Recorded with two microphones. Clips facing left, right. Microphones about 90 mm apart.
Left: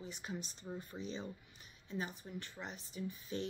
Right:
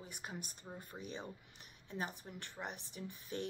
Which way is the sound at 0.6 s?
15° right (ahead or behind).